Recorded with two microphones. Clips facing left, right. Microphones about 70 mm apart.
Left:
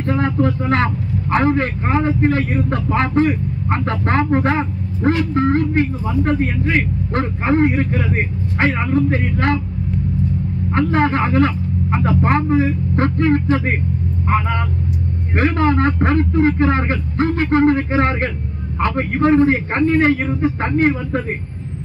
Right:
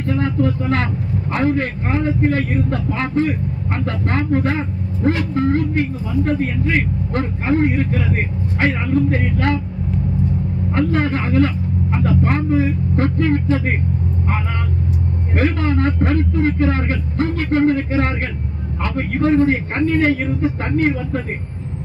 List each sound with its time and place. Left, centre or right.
0.0 s speech: left
2.9 s speech: left
10.7 s a man's voice: left